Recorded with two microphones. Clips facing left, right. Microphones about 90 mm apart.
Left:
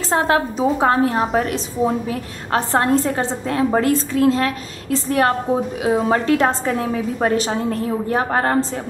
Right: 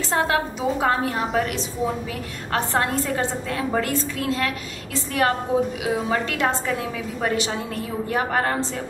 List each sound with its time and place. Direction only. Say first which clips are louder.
0.1 s a woman's voice: left 5 dB; 35° left (ahead or behind)